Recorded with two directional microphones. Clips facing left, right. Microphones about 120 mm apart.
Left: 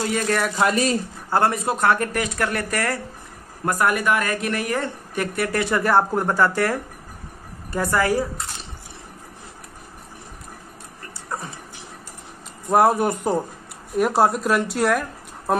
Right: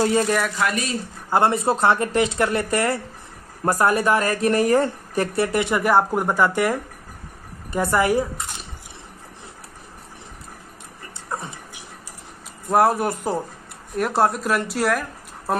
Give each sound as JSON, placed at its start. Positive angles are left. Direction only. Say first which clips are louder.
{"t": 0.6, "sound": "speech", "louder": "left 3 dB", "side_deg": 30}
{"t": 1.3, "sound": "speech", "louder": "right 2 dB", "side_deg": -25}
{"t": 5.5, "sound": "speech", "louder": "left 2 dB", "side_deg": -20}
{"t": 11.2, "sound": "a sound", "louder": "right 1 dB", "side_deg": -15}
{"t": 12.6, "sound": "speech", "louder": "left 1 dB", "side_deg": 0}